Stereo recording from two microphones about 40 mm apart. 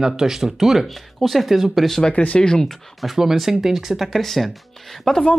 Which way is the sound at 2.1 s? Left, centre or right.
Left.